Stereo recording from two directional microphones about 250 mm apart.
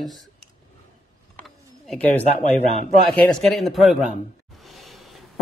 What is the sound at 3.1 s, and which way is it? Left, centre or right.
Speech, centre.